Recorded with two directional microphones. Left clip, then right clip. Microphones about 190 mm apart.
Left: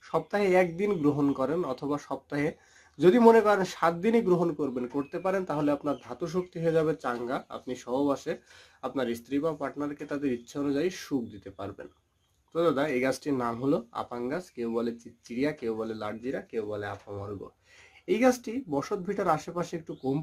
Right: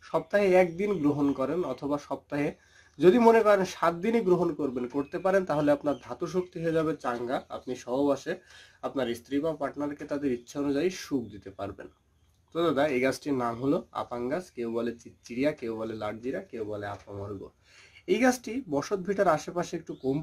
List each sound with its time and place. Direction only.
0.1 s speech: centre (ahead or behind)
17.1 s speech: 15° left (ahead or behind)
18.0 s speech: centre (ahead or behind)